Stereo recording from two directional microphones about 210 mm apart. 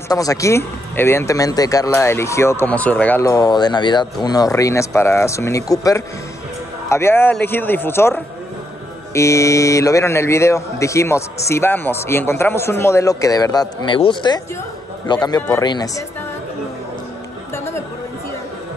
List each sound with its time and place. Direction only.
0.1 s speech: 15° left (ahead or behind)